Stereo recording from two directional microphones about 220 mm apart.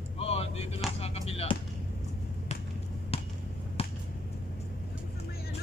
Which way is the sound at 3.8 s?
25° left (ahead or behind).